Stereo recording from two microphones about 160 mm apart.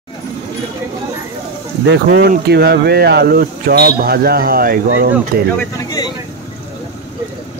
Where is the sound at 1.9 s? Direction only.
70° right (ahead or behind).